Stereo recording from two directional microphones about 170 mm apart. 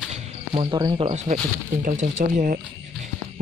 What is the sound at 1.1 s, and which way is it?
Speech, 40° right (ahead or behind).